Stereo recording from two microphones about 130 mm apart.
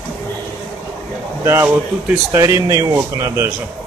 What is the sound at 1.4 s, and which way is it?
Speech, 20° right (ahead or behind).